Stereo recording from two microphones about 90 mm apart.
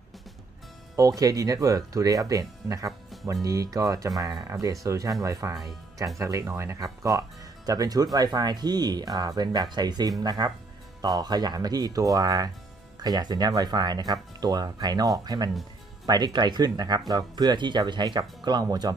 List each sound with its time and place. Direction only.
0.9 s speech: 40° right (ahead or behind)